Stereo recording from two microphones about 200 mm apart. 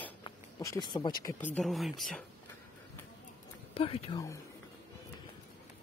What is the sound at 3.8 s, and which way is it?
Speech, 30° left (ahead or behind).